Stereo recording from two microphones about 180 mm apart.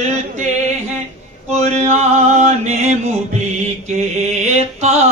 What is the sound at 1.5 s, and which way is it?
Mantra, 40° right (ahead or behind).